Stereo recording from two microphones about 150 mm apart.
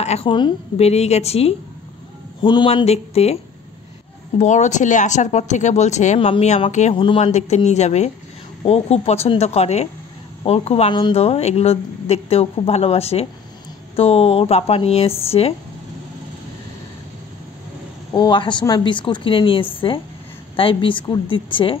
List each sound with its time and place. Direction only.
0.0 s a woman's voice: 45° left (ahead or behind)
0.8 s speech: 45° left (ahead or behind)
2.4 s speech: 30° left (ahead or behind)
4.4 s a woman's voice: 50° left (ahead or behind)
18.1 s a woman's voice: 30° left (ahead or behind)